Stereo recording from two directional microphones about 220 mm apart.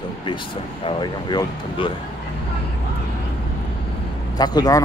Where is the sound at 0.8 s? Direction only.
20° left (ahead or behind).